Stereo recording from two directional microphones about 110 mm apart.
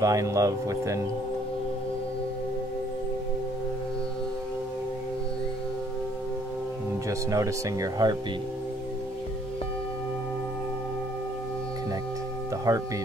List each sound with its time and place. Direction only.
0.0 s speech: 30° right (ahead or behind)
7.1 s speech: 30° right (ahead or behind)
12.7 s speech: 30° right (ahead or behind)